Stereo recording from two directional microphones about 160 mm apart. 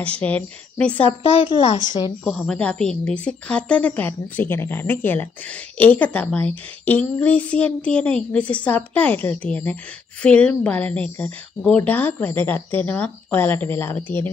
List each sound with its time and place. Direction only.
0.0 s a woman's voice: 10° left (ahead or behind)
1.2 s speech: 35° left (ahead or behind)
1.9 s speech: 30° left (ahead or behind)
2.2 s a woman's voice: 5° left (ahead or behind)